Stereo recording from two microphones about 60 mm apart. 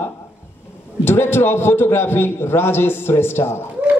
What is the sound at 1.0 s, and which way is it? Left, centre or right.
A man's voice, left.